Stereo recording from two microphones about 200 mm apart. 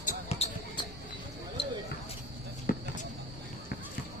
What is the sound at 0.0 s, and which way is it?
Basketball bounce, 30° left (ahead or behind).